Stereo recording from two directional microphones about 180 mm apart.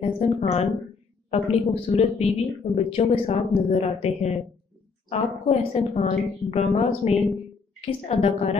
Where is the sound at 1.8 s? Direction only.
35° left (ahead or behind).